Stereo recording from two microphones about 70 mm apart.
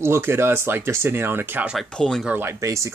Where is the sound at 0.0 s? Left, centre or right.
Right.